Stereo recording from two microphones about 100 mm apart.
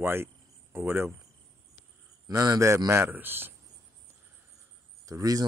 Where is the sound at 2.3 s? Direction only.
35° right (ahead or behind); by 3.6 s 20° right (ahead or behind).